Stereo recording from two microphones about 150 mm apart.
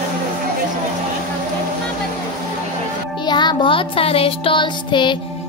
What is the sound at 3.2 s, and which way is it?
Music, 30° left (ahead or behind).